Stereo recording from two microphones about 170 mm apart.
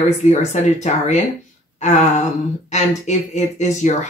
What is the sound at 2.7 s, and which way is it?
Speech, 40° left (ahead or behind).